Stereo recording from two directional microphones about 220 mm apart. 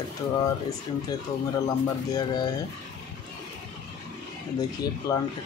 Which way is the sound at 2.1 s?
20° left (ahead or behind).